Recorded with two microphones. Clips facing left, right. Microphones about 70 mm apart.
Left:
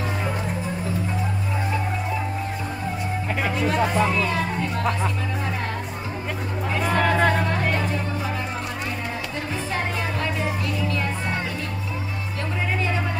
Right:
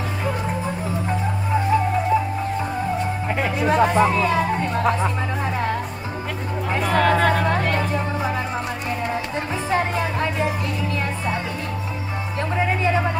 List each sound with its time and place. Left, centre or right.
3.3 s music: centre
3.5 s music: right
6.8 s music: centre